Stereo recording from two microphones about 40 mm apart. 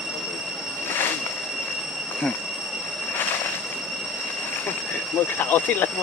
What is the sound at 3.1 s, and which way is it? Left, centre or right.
Train, left.